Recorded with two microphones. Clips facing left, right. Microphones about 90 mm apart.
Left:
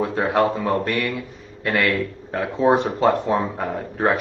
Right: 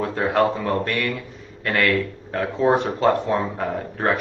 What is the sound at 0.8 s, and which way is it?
A man's voice, 15° left (ahead or behind).